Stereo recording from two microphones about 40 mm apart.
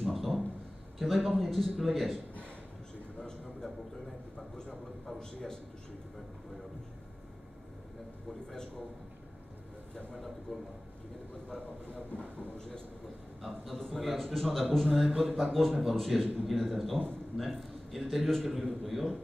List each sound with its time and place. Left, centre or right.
0.0 s a sound: centre
0.9 s a man's voice: centre
3.2 s a sound: centre
10.5 s a man's voice: centre
11.9 s speech: left
13.7 s a man's voice: centre
15.0 s speech: centre
15.3 s a man's voice: centre
15.7 s a man's voice: centre